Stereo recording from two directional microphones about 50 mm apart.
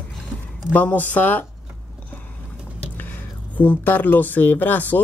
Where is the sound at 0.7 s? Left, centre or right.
Left.